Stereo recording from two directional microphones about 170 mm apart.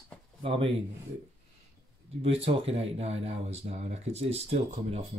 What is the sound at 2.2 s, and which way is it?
Speech, 35° right (ahead or behind).